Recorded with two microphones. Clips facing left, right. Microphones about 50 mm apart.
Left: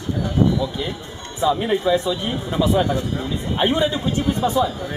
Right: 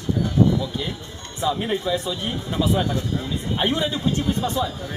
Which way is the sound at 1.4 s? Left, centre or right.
Centre.